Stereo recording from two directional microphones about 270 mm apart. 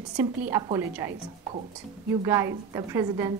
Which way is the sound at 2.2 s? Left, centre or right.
Centre.